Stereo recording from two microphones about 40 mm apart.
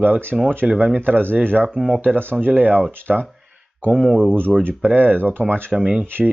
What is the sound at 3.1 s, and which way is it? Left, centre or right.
Speech, centre.